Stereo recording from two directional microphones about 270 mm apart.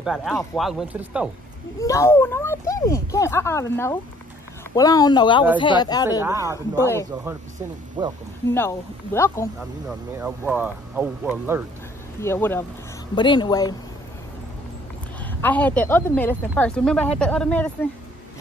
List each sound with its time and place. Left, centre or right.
0.0 s a woman's voice: centre
1.8 s speech: centre
6.2 s speech: centre
8.0 s speech: centre
8.5 s speech: centre
9.6 s a woman's voice: centre
12.2 s speech: centre
15.4 s a woman's voice: centre